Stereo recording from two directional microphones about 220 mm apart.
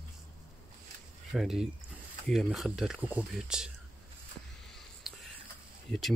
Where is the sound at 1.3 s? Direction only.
Centre (ahead or behind).